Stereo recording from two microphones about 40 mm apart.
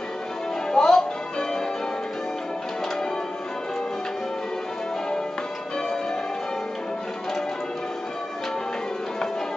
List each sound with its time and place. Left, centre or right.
0.7 s music: centre